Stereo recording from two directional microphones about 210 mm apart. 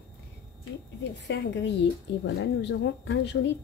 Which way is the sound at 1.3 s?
55° left (ahead or behind).